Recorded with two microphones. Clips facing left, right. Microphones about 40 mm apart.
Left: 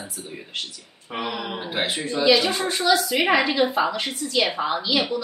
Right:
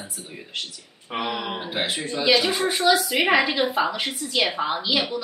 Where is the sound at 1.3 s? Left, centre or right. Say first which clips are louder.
Right 1 dB; centre.